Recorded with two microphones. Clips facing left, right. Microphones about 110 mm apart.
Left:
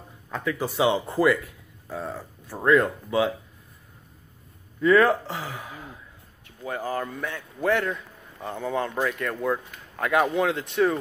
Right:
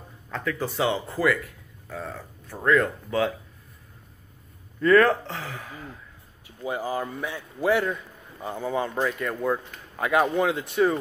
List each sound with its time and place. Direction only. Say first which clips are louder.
0.3 s speech: left 1 dB; 20° left (ahead or behind)
4.8 s speech: even; 5° left (ahead or behind)
5.4 s speech: left 1 dB; 15° left (ahead or behind)
6.4 s a man's voice: right 1 dB; 10° right (ahead or behind)